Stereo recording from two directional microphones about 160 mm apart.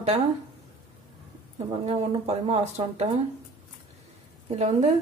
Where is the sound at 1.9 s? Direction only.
40° right (ahead or behind).